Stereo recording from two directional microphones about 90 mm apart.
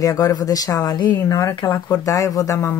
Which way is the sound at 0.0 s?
40° left (ahead or behind).